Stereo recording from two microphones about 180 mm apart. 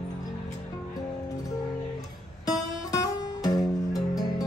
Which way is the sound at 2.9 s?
20° left (ahead or behind).